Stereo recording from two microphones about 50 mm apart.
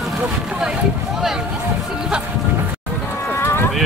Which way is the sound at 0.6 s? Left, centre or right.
Centre.